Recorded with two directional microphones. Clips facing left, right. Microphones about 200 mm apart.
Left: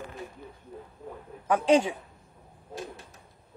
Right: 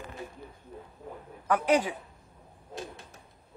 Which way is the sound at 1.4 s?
25° left (ahead or behind).